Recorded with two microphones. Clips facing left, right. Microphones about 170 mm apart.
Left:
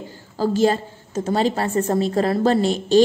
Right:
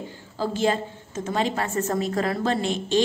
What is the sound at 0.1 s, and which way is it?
A woman's voice, 40° left (ahead or behind).